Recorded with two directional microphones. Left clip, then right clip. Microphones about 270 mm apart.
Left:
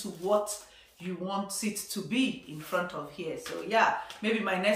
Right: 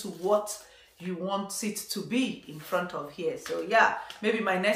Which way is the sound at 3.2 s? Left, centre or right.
Centre.